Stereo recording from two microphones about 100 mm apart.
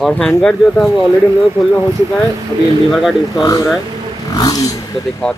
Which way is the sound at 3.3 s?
35° left (ahead or behind).